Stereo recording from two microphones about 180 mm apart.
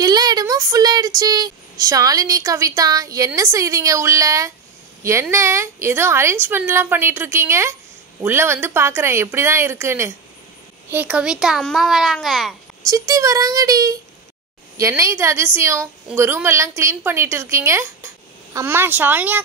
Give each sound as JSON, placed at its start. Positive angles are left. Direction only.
{"t": 0.0, "sound": "a woman's voice", "side_deg": -20}
{"t": 12.8, "sound": "a woman's voice", "side_deg": -20}